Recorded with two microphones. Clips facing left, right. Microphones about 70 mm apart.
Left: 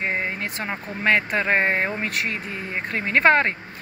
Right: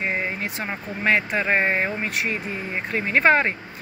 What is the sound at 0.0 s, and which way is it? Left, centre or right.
Speech, left.